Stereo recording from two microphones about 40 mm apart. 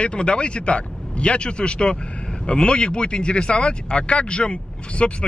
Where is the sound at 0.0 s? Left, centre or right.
Left.